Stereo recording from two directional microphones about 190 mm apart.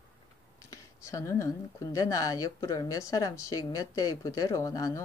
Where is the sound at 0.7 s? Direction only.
15° left (ahead or behind).